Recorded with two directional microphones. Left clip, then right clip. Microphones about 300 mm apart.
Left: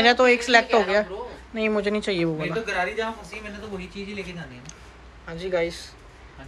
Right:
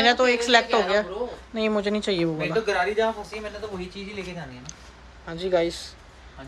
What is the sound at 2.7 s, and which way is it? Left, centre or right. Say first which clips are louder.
Speech: right 4 dB; right.